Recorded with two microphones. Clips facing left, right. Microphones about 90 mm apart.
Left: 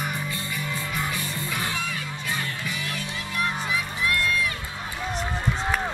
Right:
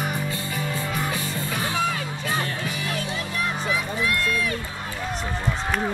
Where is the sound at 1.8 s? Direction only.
40° right (ahead or behind).